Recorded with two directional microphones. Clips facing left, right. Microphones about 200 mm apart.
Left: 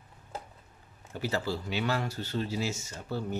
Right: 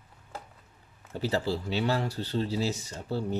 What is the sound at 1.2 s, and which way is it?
Speech, 35° right (ahead or behind).